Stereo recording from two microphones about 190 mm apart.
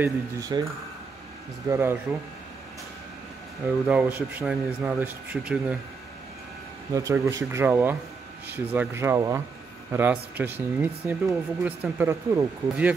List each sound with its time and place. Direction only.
0.0 s speech: 20° right (ahead or behind)
1.7 s speech: 10° right (ahead or behind)
3.8 s speech: 10° right (ahead or behind)
6.9 s speech: 15° right (ahead or behind)